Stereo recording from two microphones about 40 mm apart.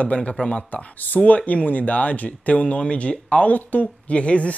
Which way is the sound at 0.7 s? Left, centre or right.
Left.